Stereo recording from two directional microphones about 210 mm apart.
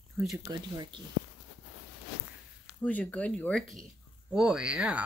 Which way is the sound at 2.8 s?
5° left (ahead or behind).